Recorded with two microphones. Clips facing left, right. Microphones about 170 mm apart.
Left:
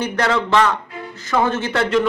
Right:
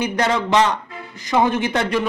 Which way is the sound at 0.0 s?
15° right (ahead or behind).